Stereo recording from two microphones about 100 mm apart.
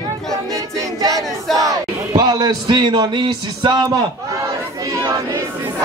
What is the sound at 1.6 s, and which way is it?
A man's voice, 40° right (ahead or behind).